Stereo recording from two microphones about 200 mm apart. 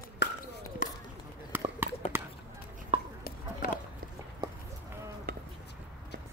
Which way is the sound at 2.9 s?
25° right (ahead or behind).